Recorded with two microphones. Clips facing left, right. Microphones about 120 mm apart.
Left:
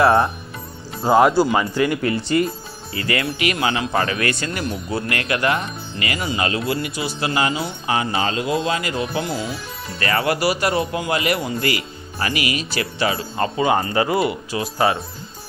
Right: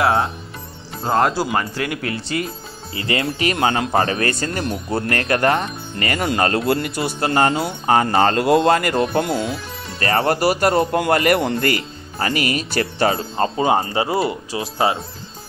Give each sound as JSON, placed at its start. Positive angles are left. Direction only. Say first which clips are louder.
{"t": 0.0, "sound": "speech", "louder": "left 3 dB", "side_deg": 0}
{"t": 2.9, "sound": "speech", "louder": "right 1 dB", "side_deg": -25}
{"t": 3.5, "sound": "speech", "louder": "right 5 dB", "side_deg": -45}
{"t": 4.9, "sound": "speech", "louder": "right 4 dB", "side_deg": -45}
{"t": 9.3, "sound": "speech", "louder": "right 4 dB", "side_deg": 0}
{"t": 9.9, "sound": "speech", "louder": "right 2 dB", "side_deg": -35}
{"t": 11.6, "sound": "speech", "louder": "right 2 dB", "side_deg": -45}
{"t": 13.2, "sound": "speech", "louder": "right 1 dB", "side_deg": -30}